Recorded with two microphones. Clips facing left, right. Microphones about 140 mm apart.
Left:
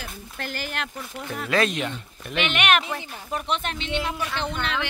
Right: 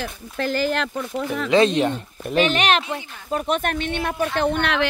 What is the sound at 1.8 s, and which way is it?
Speech, 40° right (ahead or behind).